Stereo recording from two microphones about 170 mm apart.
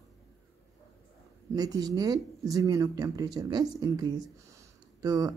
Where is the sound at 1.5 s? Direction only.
20° right (ahead or behind).